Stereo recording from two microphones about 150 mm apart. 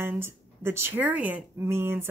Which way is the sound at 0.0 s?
15° right (ahead or behind).